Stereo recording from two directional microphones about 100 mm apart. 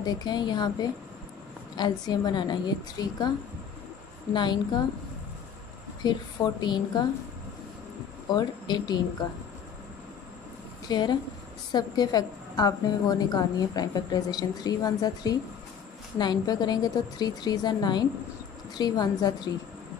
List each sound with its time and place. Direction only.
0.0 s a woman's voice: 45° left (ahead or behind)
4.3 s a woman's voice: 50° left (ahead or behind)
6.0 s a woman's voice: 45° left (ahead or behind)
8.3 s a woman's voice: 45° left (ahead or behind)
10.9 s a woman's voice: 45° left (ahead or behind)